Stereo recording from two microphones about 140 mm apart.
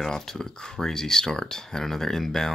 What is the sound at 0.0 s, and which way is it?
Speech, 5° left (ahead or behind).